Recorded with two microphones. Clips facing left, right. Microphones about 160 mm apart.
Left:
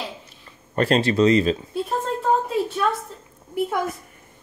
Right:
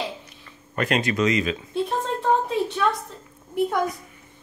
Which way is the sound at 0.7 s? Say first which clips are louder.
Left 4 dB; 30° left (ahead or behind).